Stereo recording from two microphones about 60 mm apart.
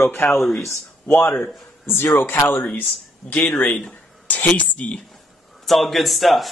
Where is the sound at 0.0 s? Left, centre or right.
Left.